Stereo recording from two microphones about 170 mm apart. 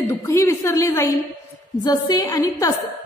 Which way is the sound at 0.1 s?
15° left (ahead or behind).